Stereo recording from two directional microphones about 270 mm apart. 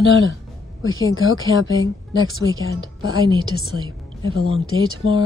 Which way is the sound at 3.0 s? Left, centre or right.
Centre.